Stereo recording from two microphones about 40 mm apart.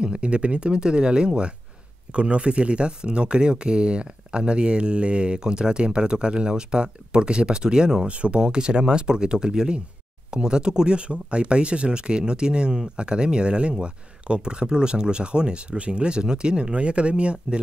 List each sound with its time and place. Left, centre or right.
0.0 s speech: right